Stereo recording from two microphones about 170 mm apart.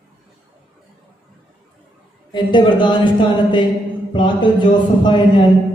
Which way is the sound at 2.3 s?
30° left (ahead or behind).